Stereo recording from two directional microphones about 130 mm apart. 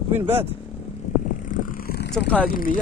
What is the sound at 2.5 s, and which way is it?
Speech, 90° left.